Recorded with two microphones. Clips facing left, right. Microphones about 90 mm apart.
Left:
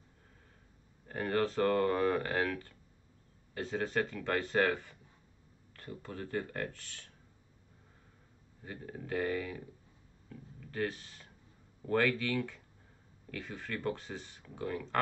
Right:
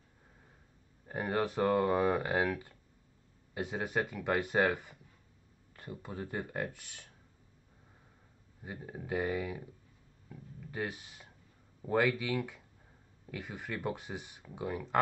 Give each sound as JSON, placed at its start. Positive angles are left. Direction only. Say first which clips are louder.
{"t": 1.0, "sound": "speech", "louder": "left 1 dB", "side_deg": -15}
{"t": 8.6, "sound": "speech", "louder": "right 1 dB", "side_deg": -15}
{"t": 10.3, "sound": "a sound", "louder": "left 1 dB", "side_deg": -15}
{"t": 11.8, "sound": "speech", "louder": "even", "side_deg": -15}